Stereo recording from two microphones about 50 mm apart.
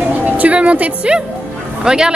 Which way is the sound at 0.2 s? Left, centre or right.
Right.